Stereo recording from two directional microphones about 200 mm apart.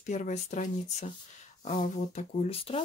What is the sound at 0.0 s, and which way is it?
Speech, 35° left (ahead or behind).